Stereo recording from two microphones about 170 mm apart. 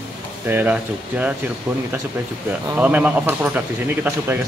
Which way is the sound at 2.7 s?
10° right (ahead or behind).